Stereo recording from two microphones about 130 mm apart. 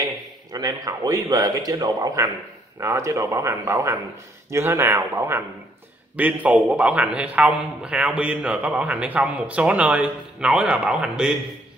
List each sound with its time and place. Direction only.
0.0 s a man's voice: 30° right (ahead or behind); by 11.3 s 5° right (ahead or behind)